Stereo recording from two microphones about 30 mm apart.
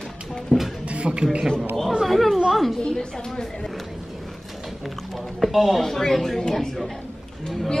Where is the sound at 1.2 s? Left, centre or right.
Right.